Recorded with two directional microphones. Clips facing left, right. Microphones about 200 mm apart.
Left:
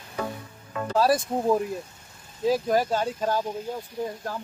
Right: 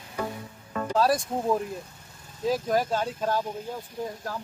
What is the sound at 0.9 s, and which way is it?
Speech, 5° left (ahead or behind).